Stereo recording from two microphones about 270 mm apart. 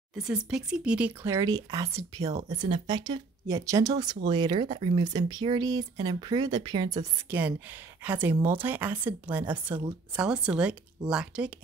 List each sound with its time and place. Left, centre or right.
0.1 s speech: centre
2.3 s speech: right; by 11.5 s centre